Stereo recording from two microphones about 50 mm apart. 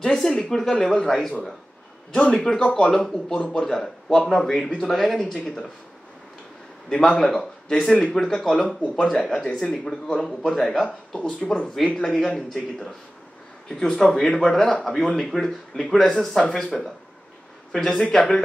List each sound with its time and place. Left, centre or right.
0.0 s speech: centre
4.8 s speech: centre
6.9 s speech: centre
10.5 s speech: centre
11.2 s speech: centre
17.7 s speech: centre